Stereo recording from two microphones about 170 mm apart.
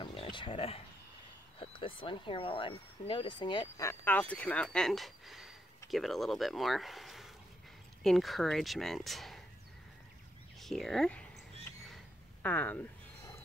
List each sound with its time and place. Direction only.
0.0 s speech: 30° left (ahead or behind)
3.6 s speech: 15° left (ahead or behind)
10.6 s speech: centre (ahead or behind)
12.4 s a sound: 10° left (ahead or behind)